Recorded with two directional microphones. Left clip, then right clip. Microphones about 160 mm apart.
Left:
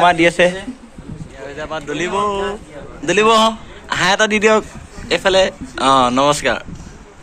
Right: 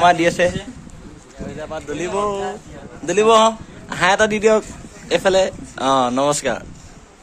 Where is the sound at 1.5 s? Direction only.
15° right (ahead or behind).